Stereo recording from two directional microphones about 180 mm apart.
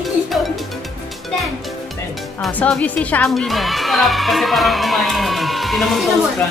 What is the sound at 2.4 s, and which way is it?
Speech, 5° left (ahead or behind).